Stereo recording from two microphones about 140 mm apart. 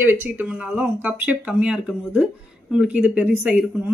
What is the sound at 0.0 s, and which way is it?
Speech, 15° right (ahead or behind).